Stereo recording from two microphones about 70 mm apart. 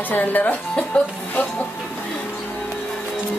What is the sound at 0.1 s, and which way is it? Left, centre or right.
A woman's voice, left.